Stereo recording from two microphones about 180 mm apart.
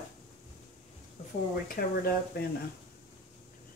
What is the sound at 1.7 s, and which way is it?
Speech, 60° left (ahead or behind).